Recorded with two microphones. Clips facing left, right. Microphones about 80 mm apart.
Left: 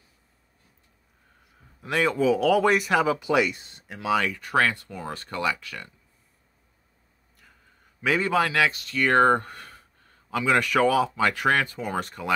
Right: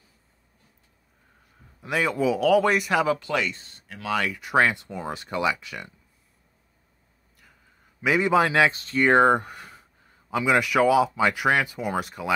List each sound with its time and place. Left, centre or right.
1.8 s speech: centre
3.2 s speech: centre
4.3 s speech: centre
7.3 s a sound: centre
8.0 s speech: centre; by 9.1 s right
9.1 s speech: centre